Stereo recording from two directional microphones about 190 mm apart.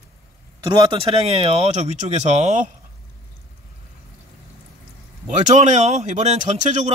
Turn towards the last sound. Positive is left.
turn(degrees=-35)  # may be behind; listen again after turning